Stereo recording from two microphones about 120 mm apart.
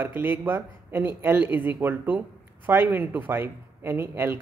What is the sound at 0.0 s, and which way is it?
Speech, 15° right (ahead or behind).